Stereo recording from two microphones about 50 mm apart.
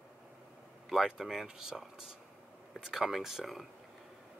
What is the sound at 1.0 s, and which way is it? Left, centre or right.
Speech, centre.